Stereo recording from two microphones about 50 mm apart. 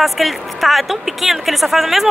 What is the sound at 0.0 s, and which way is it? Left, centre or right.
A woman's voice, centre.